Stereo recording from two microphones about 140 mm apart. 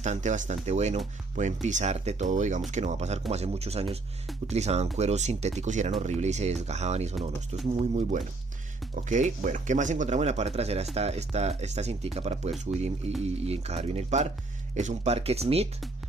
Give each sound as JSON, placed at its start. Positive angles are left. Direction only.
{"t": 0.0, "sound": "speech", "side_deg": -60}